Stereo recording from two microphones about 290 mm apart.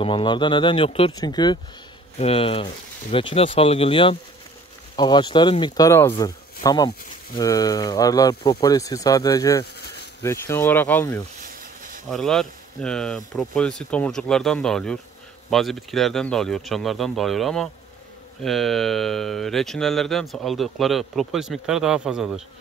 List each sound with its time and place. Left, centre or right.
0.0 s speech: centre
11.4 s a sound: right
12.1 s speech: centre